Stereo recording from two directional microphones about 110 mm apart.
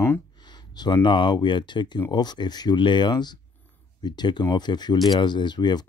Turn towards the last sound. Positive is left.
turn(degrees=40)  # may be behind; listen again after turning